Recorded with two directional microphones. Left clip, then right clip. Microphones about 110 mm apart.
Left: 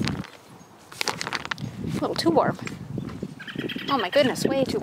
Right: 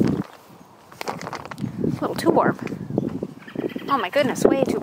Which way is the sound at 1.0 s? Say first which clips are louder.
Left 1 dB; 70° left (ahead or behind).